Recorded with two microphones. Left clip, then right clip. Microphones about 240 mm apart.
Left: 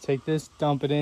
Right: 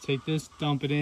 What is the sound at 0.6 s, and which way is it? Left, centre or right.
Speech, right.